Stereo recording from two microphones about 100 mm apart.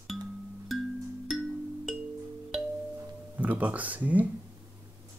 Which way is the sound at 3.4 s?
15° right (ahead or behind).